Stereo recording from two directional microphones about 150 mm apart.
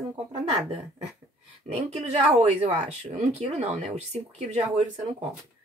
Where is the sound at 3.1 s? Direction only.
50° right (ahead or behind).